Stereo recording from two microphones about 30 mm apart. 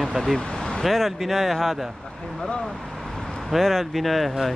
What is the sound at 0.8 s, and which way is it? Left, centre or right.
Speech, centre.